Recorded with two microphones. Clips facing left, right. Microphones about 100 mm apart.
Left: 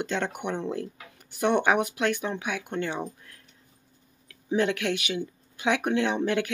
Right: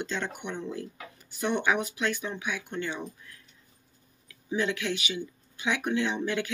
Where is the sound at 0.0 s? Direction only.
55° left (ahead or behind).